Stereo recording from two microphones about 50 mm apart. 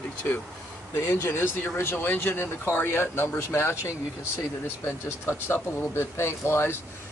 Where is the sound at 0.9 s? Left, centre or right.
Left.